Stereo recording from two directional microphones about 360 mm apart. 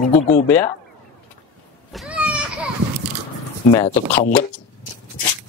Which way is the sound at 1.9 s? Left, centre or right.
Centre.